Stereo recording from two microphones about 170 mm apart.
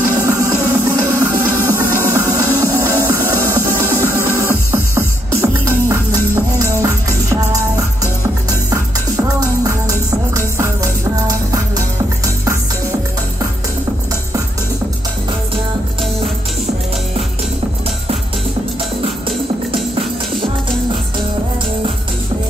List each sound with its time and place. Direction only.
0.2 s music: 20° right (ahead or behind)